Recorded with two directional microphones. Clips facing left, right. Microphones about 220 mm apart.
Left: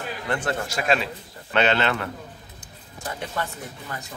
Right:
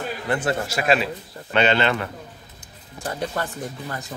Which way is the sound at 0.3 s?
5° right (ahead or behind).